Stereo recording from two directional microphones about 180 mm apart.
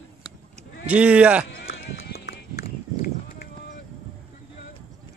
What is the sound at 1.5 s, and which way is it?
Music, 60° left (ahead or behind).